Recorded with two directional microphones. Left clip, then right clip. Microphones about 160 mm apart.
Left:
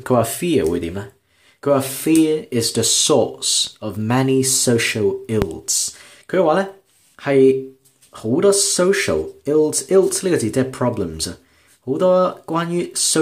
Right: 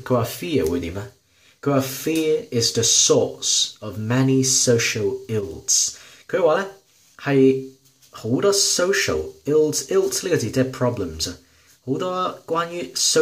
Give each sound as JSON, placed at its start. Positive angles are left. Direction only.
{"t": 0.0, "sound": "speech", "side_deg": 35}
{"t": 1.6, "sound": "speech", "side_deg": 35}